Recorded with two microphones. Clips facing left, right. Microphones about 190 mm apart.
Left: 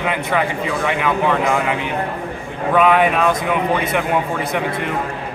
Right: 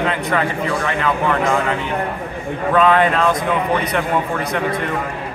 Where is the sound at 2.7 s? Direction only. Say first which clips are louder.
Even; 10° left (ahead or behind).